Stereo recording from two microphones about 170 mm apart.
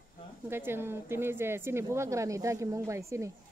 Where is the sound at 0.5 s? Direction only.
15° right (ahead or behind).